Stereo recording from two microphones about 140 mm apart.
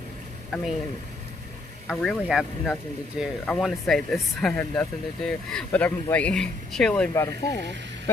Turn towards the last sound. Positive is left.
turn(degrees=25)  # may be behind; listen again after turning